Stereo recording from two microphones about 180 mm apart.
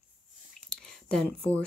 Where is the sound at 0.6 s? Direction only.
5° left (ahead or behind).